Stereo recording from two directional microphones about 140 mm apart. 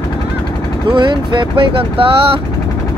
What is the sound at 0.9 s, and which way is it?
Speech, 35° right (ahead or behind).